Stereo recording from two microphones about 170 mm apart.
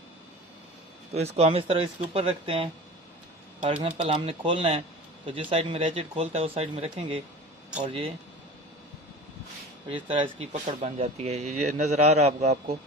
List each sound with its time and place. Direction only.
1.1 s a man's voice: 40° right (ahead or behind)
10.4 s a man's voice: 40° right (ahead or behind)